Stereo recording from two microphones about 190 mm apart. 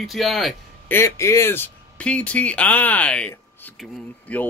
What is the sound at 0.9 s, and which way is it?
Speech, 15° left (ahead or behind).